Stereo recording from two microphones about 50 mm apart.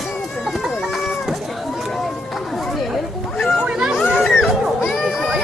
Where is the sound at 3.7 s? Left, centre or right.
Right.